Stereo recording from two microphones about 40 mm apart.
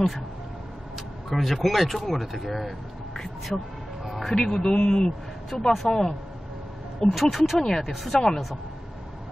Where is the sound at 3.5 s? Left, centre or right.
Centre.